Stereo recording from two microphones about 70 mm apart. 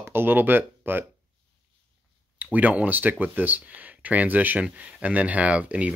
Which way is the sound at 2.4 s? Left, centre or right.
Right.